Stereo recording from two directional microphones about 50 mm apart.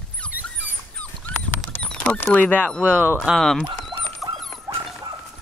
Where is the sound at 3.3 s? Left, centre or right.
Right.